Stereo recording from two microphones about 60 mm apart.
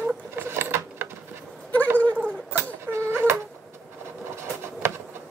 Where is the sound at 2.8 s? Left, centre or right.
Right.